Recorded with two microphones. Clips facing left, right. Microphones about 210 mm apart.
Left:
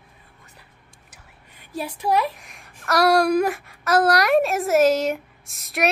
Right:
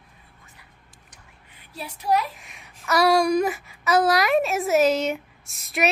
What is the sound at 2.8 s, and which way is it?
A woman's voice, centre (ahead or behind).